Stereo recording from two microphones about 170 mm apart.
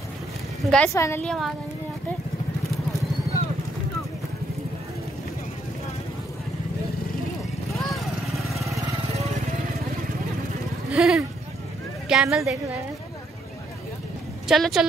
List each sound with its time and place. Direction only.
0.7 s a woman's voice: 5° left (ahead or behind)
0.9 s a woman's voice: 15° left (ahead or behind)
1.2 s a woman's voice: 5° left (ahead or behind)
7.7 s vehicle: centre (ahead or behind)
10.9 s a woman's voice: 5° right (ahead or behind)
14.5 s a woman's voice: centre (ahead or behind)